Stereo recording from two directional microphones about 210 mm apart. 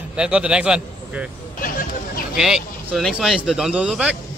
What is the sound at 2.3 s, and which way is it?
A man's voice, centre (ahead or behind).